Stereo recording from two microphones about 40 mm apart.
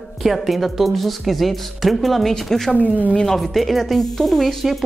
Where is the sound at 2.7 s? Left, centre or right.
Left.